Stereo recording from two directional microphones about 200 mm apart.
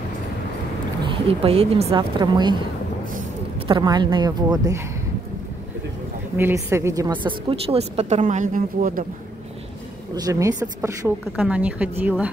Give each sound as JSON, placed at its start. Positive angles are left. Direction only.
{"t": 1.0, "sound": "a woman's voice", "side_deg": -30}
{"t": 3.5, "sound": "a woman's voice", "side_deg": -25}
{"t": 6.3, "sound": "a woman's voice", "side_deg": -10}
{"t": 10.1, "sound": "a woman's voice", "side_deg": -20}